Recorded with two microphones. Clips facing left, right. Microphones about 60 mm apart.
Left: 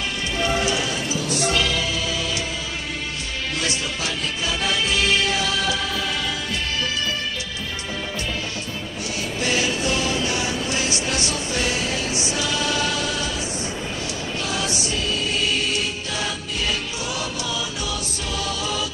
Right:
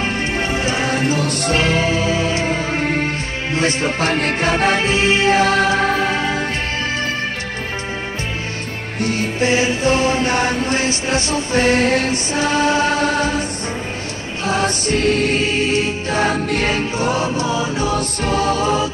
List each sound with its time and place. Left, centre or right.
0.0 s music: right
9.0 s music: right
14.4 s music: right